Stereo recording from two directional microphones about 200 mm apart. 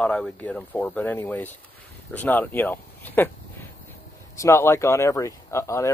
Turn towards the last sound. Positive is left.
turn(degrees=15)  # may be behind; listen again after turning